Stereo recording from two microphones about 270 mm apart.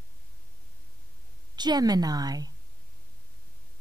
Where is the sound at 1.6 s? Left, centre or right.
Centre.